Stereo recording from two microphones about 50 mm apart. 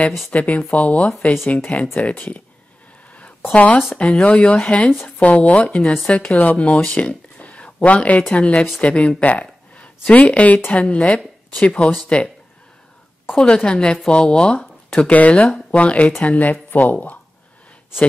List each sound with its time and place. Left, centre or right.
0.3 s speech: left
3.1 s a sound: left
4.0 s speech: left
13.4 s a woman's voice: centre
15.0 s speech: left